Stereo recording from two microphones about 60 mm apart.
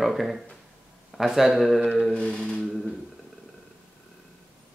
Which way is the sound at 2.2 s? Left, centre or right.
Centre.